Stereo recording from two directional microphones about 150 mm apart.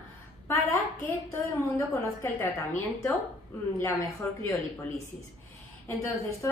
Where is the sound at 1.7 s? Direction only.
15° left (ahead or behind).